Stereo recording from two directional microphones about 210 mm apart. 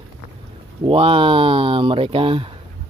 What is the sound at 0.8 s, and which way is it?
Speech, 25° right (ahead or behind).